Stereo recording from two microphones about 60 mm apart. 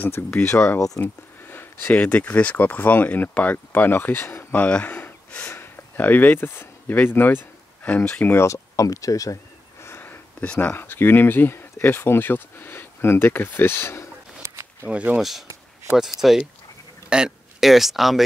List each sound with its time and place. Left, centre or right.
0.4 s speech: left
1.0 s a sound: left
2.0 s speech: left
4.6 s speech: centre
5.5 s speech: left
8.4 s speech: left
9.8 s a sound: left
10.4 s speech: left
10.7 s speech: left
14.5 s walk: right
14.9 s speech: right
15.1 s speech: centre
17.6 s speech: centre